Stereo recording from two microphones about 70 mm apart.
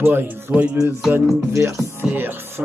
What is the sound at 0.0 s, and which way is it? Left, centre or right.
Music, right.